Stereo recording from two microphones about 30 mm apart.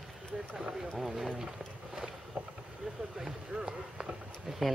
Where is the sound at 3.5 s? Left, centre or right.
Right.